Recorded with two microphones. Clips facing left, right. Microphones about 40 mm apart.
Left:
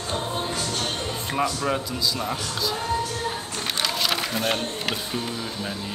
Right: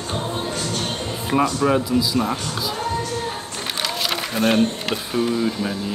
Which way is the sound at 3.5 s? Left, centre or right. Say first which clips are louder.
Right 1 dB; centre.